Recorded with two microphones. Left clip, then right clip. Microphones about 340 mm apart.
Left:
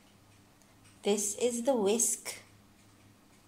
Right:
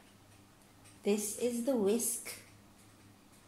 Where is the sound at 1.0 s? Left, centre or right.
Left.